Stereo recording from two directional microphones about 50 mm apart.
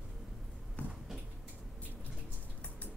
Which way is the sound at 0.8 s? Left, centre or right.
Left.